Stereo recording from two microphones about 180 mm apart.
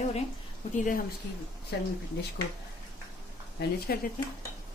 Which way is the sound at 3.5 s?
60° left (ahead or behind).